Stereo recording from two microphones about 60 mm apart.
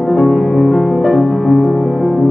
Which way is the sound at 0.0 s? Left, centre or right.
Centre.